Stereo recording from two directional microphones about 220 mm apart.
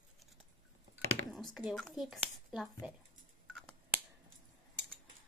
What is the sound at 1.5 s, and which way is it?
Speech, centre (ahead or behind).